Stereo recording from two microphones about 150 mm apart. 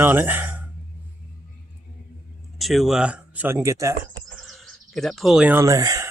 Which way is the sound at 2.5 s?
Centre (ahead or behind).